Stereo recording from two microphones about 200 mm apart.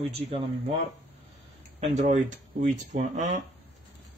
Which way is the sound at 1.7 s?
35° right (ahead or behind).